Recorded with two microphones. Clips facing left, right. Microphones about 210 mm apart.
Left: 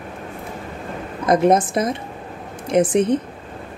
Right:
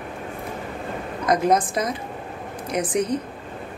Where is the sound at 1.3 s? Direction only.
25° left (ahead or behind).